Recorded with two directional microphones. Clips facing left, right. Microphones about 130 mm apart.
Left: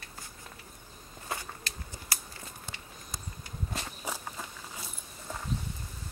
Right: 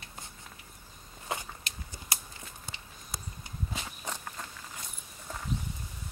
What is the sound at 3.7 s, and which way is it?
Walk, 10° left (ahead or behind).